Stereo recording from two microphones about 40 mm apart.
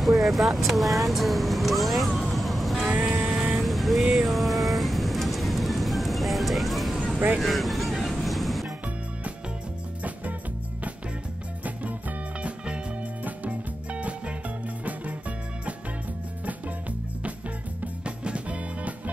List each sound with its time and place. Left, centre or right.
0.0 s speech: centre
2.3 s music: centre
2.9 s a sound: right
3.6 s vehicle: centre
7.3 s speech: centre
8.1 s vehicle: centre
12.4 s music: right
13.2 s music: right
18.0 s music: right